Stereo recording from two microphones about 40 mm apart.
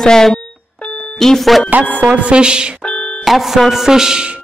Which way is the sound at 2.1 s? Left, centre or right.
Right.